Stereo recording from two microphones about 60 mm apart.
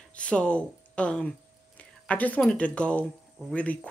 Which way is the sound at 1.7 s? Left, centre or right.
Left.